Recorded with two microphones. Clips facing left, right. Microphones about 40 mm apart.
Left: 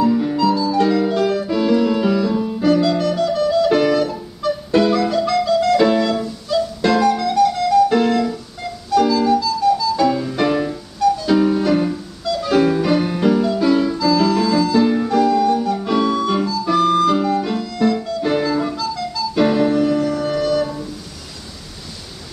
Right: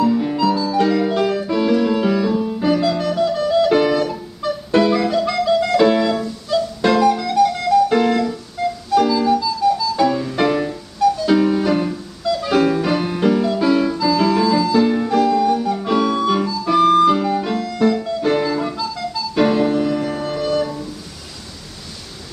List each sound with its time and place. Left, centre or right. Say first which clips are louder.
0.0 s music: left 1 dB; centre
1.4 s keyboard: even; centre
2.6 s clarinet: left 3 dB; centre
3.3 s music: right 1 dB; centre
12.3 s music: even; centre
20.0 s music: left 3 dB; right
20.2 s music: left 2 dB; centre